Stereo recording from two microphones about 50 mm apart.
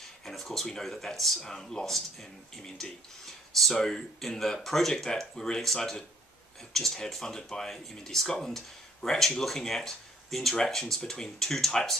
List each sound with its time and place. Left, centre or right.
0.0 s speech: centre